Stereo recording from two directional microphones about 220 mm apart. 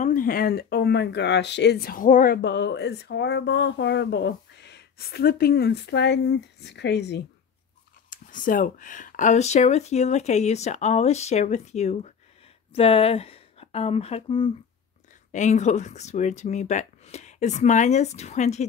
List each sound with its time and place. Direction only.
0.0 s speech: 40° left (ahead or behind)
8.1 s speech: 35° left (ahead or behind)